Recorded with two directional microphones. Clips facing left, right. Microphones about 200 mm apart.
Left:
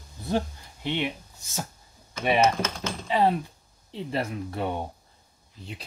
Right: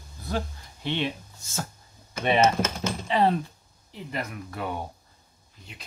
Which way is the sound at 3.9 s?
25° left (ahead or behind).